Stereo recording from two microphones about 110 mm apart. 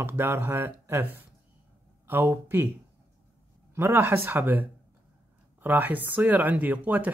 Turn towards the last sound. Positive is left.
turn(degrees=-15)  # may be behind; listen again after turning